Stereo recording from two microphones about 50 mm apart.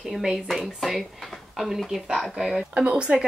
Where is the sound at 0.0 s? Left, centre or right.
Centre.